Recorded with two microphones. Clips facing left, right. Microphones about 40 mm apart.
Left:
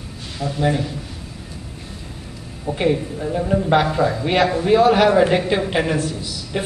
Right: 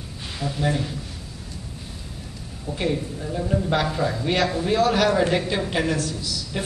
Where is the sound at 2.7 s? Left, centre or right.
Left.